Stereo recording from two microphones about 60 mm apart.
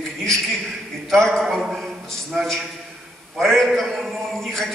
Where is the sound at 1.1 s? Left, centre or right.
Centre.